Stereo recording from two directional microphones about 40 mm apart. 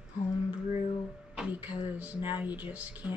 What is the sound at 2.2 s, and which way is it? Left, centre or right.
Speech, right.